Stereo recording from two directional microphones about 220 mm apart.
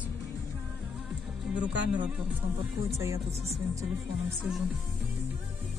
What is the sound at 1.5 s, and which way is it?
Speech, 5° right (ahead or behind).